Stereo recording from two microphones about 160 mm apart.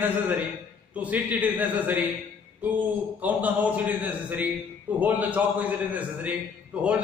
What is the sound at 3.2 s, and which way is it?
A man's voice, 10° right (ahead or behind).